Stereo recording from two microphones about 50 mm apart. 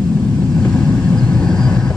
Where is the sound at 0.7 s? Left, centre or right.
Centre.